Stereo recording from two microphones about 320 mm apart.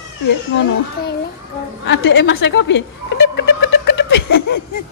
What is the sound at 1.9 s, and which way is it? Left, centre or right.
A woman's voice, left.